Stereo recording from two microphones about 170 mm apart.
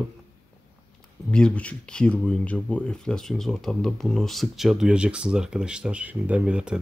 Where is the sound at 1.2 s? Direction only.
5° left (ahead or behind).